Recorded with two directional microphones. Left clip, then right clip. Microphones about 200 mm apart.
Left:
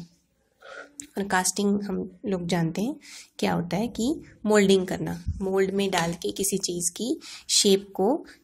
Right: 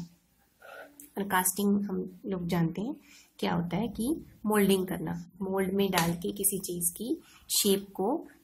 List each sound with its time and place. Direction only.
0.9 s a woman's voice: 30° left (ahead or behind)